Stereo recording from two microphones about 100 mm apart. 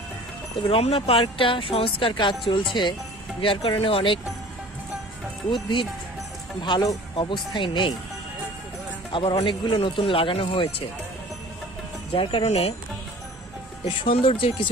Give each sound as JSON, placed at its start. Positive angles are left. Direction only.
{"t": 0.6, "sound": "speech", "side_deg": 70}
{"t": 5.5, "sound": "speech", "side_deg": 55}
{"t": 7.5, "sound": "speech", "side_deg": 55}
{"t": 9.4, "sound": "speech", "side_deg": 60}
{"t": 12.2, "sound": "speech", "side_deg": 60}
{"t": 13.8, "sound": "speech", "side_deg": 60}